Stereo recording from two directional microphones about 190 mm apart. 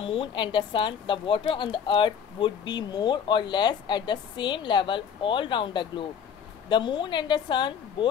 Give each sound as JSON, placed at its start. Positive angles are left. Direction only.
{"t": 0.0, "sound": "a woman's voice", "side_deg": 30}